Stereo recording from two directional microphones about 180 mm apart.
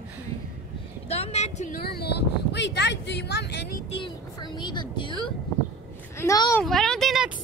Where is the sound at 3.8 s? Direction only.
30° left (ahead or behind).